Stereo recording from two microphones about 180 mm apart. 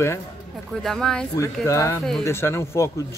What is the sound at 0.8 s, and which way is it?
Speech, 5° left (ahead or behind).